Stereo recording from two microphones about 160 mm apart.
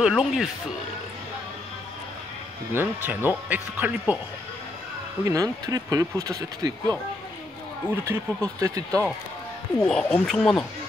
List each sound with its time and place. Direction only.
0.0 s speech: 5° right (ahead or behind)
2.7 s speech: 10° right (ahead or behind)
5.2 s speech: 20° right (ahead or behind)
9.8 s speech: 5° left (ahead or behind)